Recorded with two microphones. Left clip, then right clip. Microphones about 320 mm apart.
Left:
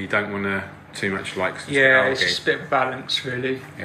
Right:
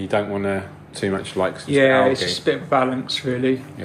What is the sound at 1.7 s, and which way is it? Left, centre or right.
Speech, right.